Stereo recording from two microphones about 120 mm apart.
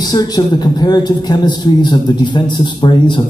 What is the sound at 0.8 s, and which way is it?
A man's voice, 40° left (ahead or behind).